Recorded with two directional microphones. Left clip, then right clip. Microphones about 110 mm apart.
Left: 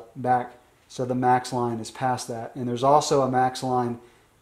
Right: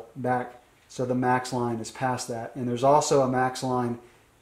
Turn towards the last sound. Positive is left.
turn(degrees=20)  # may be behind; listen again after turning